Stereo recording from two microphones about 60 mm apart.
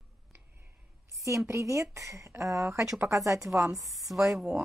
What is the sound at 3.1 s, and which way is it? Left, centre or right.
Speech, right.